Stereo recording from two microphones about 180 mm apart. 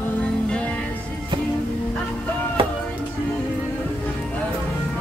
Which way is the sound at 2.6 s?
30° right (ahead or behind).